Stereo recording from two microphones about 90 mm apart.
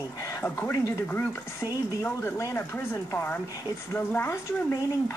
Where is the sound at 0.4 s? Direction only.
30° left (ahead or behind).